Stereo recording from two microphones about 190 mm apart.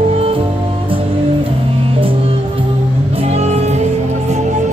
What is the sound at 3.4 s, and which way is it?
Music, 35° right (ahead or behind).